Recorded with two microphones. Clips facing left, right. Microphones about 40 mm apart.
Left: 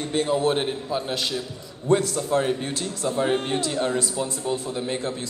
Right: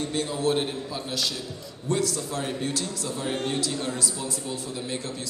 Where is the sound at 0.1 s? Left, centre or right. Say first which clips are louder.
Left 6 dB; left.